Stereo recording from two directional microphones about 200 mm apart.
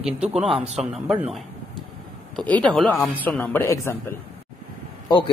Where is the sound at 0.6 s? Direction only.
30° right (ahead or behind).